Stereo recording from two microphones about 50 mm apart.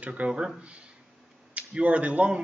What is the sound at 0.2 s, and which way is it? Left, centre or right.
Speech, right.